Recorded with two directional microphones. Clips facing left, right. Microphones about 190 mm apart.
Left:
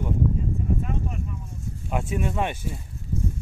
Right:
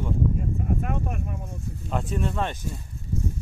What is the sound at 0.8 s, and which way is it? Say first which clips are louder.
Speech: right 1 dB; 60° right (ahead or behind).